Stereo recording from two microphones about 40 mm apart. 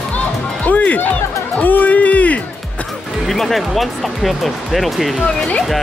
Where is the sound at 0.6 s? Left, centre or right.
Left.